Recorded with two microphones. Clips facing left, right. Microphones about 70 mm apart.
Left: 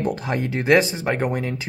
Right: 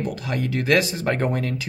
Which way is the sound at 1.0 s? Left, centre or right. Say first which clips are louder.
Even; centre.